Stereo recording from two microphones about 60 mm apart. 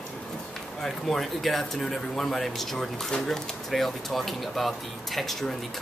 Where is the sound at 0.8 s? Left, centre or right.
Centre.